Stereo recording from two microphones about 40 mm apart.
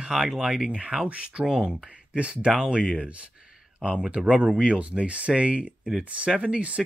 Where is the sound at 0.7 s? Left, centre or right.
Right.